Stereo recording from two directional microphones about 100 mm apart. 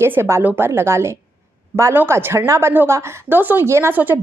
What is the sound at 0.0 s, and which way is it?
A woman's voice, 25° right (ahead or behind).